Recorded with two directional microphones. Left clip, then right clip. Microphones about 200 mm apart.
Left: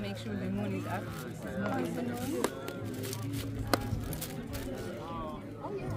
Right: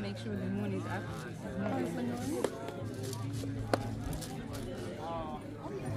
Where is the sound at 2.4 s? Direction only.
65° left (ahead or behind).